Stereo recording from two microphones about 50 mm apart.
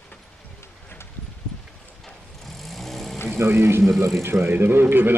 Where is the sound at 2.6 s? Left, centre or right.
Centre.